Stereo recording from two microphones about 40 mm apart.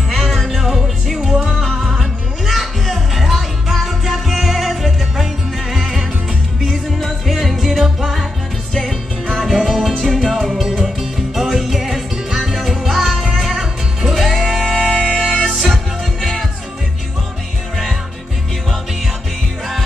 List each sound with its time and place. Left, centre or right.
0.1 s music: centre
11.0 s music: centre
15.0 s music: centre
15.2 s music: centre